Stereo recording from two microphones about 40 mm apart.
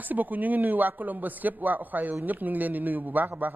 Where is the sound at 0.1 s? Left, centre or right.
Right.